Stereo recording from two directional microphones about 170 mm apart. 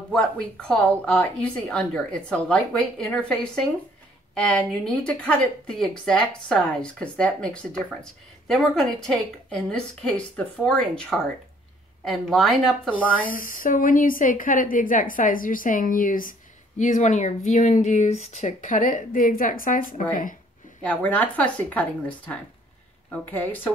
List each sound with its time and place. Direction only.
0.1 s a woman's voice: 5° left (ahead or behind)
12.9 s speech: 55° left (ahead or behind)
20.8 s a woman's voice: 10° left (ahead or behind)